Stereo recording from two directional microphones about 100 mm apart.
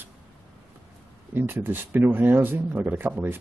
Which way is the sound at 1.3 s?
20° right (ahead or behind).